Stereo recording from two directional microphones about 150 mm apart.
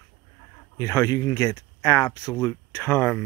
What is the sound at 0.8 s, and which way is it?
Speech, 20° left (ahead or behind).